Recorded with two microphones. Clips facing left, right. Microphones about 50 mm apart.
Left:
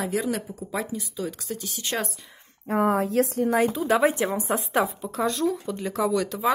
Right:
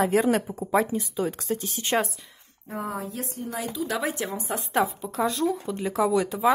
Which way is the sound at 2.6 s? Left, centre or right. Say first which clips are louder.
Left 9 dB; left.